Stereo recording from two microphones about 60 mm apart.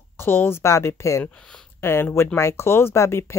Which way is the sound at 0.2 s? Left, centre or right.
Left.